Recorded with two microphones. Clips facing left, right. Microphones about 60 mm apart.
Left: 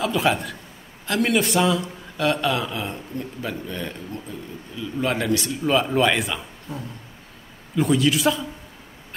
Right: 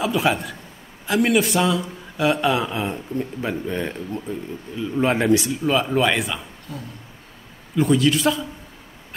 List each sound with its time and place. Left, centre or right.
0.0 s speech: centre
2.1 s speech: centre
5.4 s speech: centre
6.7 s a sound: left
7.7 s speech: centre